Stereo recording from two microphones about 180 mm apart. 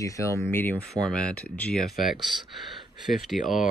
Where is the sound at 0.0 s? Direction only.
15° left (ahead or behind); by 3.6 s centre (ahead or behind).